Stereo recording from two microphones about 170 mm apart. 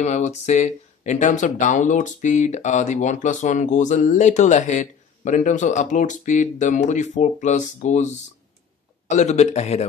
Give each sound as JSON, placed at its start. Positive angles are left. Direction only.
{"t": 0.0, "sound": "speech", "side_deg": 45}
{"t": 9.1, "sound": "a man's voice", "side_deg": 45}